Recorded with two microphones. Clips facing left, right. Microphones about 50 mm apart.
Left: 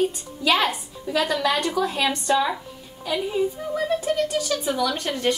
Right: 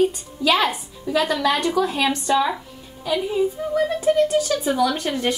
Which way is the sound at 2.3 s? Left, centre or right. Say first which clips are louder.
Right 1 dB; centre.